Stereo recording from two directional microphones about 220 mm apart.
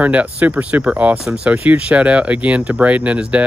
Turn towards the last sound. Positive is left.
turn(degrees=-5)  # may be behind; listen again after turning